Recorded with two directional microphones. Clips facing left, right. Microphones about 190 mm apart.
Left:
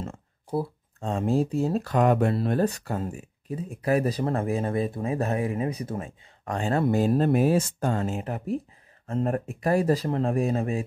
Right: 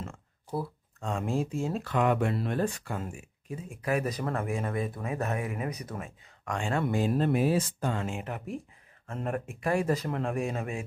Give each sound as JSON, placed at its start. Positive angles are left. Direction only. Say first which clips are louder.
{"t": 0.0, "sound": "speech", "louder": "left 5 dB", "side_deg": 30}